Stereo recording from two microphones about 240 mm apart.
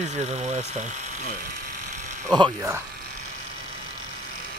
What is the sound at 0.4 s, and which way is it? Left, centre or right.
Speech, right.